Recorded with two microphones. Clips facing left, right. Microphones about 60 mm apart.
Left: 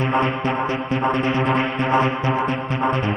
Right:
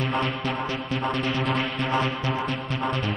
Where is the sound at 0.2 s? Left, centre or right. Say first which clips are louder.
Left 6 dB; left.